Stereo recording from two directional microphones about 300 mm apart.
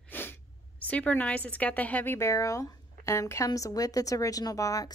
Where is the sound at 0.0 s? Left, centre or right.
Centre.